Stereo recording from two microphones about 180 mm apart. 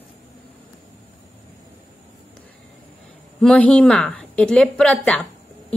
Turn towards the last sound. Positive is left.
turn(degrees=5)  # may be behind; listen again after turning